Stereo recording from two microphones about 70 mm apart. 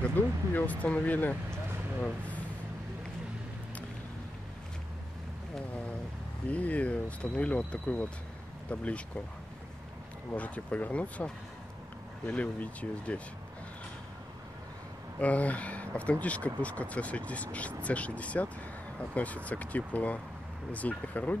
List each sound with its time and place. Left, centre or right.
0.0 s speech: left
6.5 s speech: left
10.3 s speech: centre
15.1 s speech: centre